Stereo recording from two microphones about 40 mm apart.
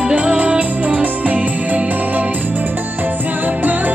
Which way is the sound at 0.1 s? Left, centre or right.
Right.